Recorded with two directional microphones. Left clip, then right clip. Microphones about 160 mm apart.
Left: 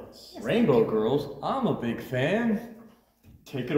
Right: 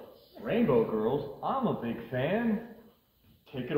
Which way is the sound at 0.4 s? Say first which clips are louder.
Left 4 dB; 20° left (ahead or behind).